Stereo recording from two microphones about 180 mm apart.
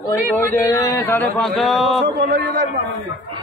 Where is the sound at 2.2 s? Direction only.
50° right (ahead or behind).